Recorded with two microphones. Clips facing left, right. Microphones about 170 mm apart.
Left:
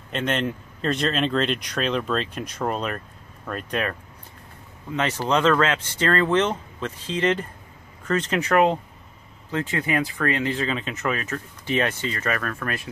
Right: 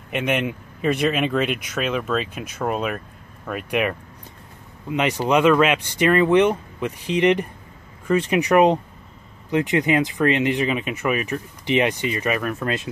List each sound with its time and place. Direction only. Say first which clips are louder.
0.1 s speech: right 2 dB; 10° right (ahead or behind)